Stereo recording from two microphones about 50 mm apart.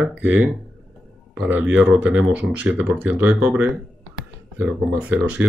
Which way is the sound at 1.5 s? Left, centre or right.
Right.